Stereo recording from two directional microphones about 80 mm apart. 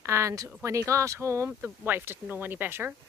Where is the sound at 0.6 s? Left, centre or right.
Right.